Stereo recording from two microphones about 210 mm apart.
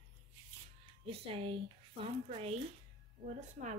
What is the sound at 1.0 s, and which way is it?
A woman's voice, 25° right (ahead or behind).